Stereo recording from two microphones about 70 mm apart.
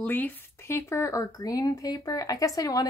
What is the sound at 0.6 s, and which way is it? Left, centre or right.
Speech, left.